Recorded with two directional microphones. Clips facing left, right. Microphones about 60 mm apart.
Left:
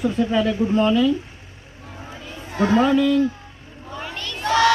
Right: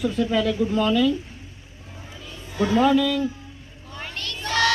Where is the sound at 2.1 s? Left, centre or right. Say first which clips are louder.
Left 3 dB; left.